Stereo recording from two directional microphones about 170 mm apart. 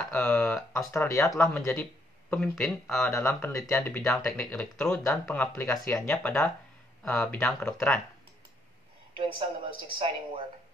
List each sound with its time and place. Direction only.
0.1 s speech: 5° left (ahead or behind)
0.9 s speech: 15° left (ahead or behind)
9.1 s a sound: 30° right (ahead or behind)
9.9 s speech: 35° right (ahead or behind)